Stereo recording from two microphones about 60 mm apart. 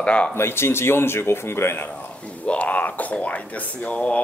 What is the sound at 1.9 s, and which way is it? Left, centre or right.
Speech, left.